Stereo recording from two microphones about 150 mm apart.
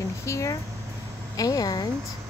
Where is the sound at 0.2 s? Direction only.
20° left (ahead or behind).